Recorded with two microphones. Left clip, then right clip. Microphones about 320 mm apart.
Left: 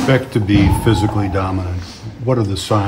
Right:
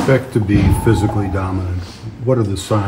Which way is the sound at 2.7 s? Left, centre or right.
Centre.